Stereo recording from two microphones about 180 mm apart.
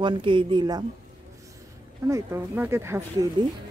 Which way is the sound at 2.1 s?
15° right (ahead or behind).